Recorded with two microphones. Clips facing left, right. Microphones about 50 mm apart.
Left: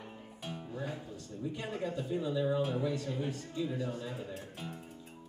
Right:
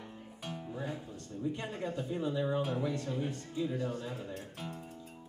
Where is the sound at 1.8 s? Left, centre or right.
Right.